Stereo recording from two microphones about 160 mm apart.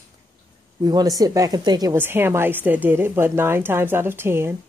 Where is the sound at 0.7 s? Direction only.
25° right (ahead or behind).